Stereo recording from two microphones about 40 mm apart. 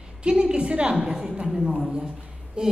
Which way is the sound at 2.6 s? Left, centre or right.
Right.